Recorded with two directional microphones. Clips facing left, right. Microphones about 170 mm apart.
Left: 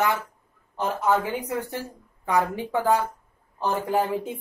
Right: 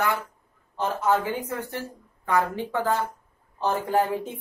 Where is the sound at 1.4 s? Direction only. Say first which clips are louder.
Left 2 dB; 15° left (ahead or behind).